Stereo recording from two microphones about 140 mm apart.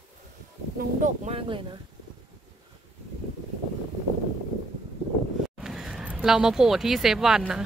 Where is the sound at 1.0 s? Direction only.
55° right (ahead or behind).